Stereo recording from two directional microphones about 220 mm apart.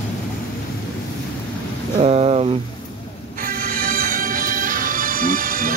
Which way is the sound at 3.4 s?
40° right (ahead or behind).